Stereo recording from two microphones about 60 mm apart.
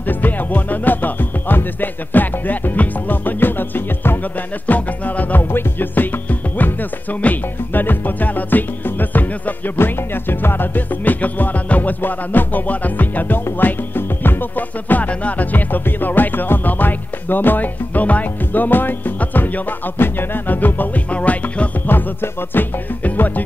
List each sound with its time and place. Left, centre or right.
0.1 s music: left
4.6 s music: left